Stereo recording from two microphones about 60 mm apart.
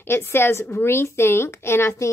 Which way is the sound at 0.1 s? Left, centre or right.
Left.